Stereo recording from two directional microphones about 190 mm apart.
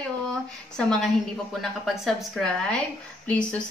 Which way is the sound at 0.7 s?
5° left (ahead or behind).